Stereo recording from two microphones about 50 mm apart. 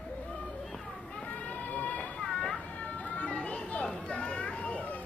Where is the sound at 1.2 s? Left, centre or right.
Left.